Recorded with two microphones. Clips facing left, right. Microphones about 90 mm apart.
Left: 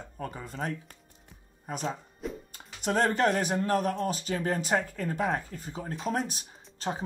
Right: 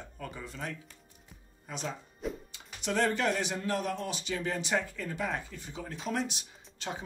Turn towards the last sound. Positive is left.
turn(degrees=35)  # may be behind; listen again after turning